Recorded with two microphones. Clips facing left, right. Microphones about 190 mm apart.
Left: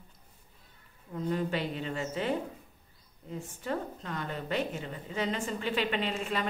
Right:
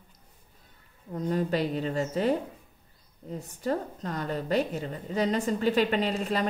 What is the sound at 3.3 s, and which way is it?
Speech, 40° right (ahead or behind).